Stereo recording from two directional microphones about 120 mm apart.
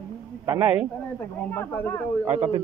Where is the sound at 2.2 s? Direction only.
15° right (ahead or behind).